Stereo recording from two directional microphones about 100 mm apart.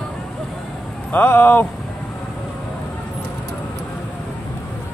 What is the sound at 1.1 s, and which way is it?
Speech, 20° left (ahead or behind).